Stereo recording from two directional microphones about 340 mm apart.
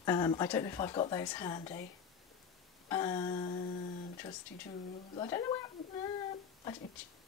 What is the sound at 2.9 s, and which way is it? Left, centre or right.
Speech, centre.